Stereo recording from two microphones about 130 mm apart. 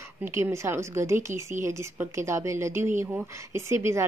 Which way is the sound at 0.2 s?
20° right (ahead or behind).